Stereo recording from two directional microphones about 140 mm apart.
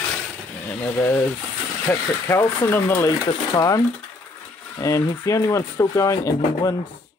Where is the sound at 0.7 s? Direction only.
15° left (ahead or behind).